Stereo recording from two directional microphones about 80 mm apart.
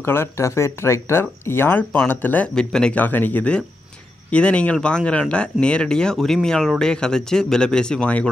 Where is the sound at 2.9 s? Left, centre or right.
Left.